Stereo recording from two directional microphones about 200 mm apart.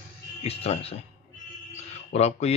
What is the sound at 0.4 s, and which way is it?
Speech, 30° left (ahead or behind).